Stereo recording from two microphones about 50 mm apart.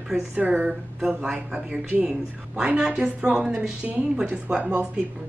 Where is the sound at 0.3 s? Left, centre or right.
Right.